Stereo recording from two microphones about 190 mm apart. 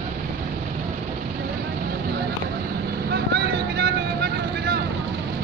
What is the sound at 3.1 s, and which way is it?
Vehicle, 60° right (ahead or behind).